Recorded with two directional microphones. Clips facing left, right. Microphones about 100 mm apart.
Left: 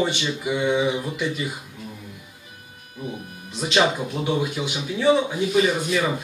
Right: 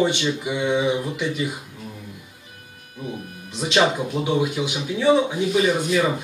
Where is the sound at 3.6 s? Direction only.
15° right (ahead or behind).